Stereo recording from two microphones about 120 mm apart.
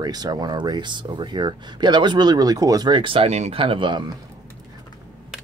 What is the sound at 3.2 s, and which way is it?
Speech, 65° right (ahead or behind).